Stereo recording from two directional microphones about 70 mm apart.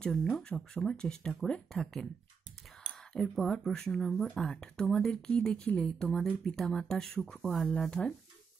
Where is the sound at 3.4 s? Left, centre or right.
Centre.